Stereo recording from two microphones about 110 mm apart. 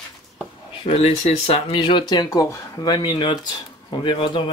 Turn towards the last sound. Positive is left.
turn(degrees=50)  # may be behind; listen again after turning